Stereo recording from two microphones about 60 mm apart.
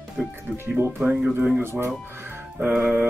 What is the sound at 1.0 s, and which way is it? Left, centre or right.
Speech, right.